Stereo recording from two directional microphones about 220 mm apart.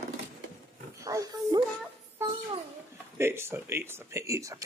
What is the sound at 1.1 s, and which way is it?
Roaring cats, 15° right (ahead or behind).